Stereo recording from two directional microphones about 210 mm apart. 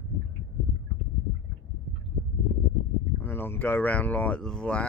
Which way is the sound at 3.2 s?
10° left (ahead or behind).